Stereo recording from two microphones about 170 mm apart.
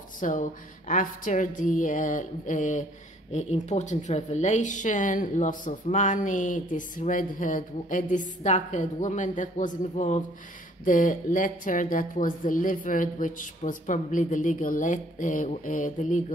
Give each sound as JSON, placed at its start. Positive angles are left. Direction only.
{"t": 0.2, "sound": "speech", "side_deg": 50}